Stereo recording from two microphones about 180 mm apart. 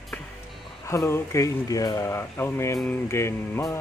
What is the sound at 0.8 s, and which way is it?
Speech, 15° left (ahead or behind).